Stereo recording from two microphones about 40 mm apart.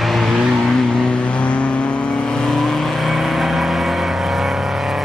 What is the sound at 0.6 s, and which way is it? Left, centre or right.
Vehicle, left.